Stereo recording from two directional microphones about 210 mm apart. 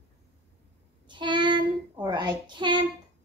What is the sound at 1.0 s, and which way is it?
Child singing, 20° right (ahead or behind).